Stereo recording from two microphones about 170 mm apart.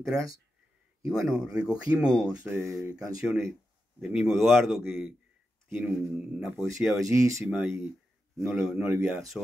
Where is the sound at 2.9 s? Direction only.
20° right (ahead or behind).